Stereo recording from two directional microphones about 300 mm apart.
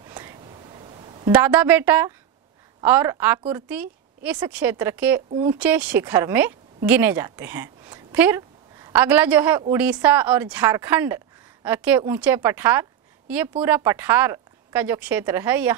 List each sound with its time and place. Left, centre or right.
0.1 s whispering: centre
1.3 s a woman's voice: centre